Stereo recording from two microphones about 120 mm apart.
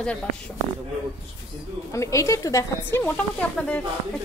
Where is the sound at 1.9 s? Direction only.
25° left (ahead or behind).